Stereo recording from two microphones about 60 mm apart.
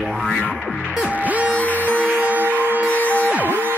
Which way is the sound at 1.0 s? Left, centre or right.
Right.